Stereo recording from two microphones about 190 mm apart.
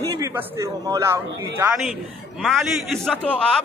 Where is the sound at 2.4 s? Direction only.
Centre (ahead or behind).